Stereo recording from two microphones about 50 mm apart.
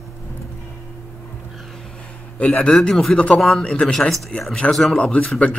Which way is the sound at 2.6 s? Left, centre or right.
Centre.